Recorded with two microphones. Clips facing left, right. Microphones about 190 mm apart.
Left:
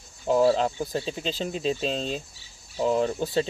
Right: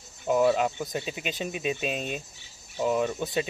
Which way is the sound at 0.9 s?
15° right (ahead or behind).